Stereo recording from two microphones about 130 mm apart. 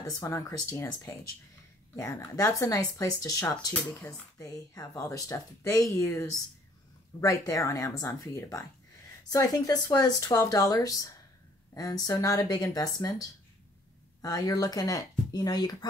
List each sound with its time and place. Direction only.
0.0 s a woman's voice: 25° left (ahead or behind)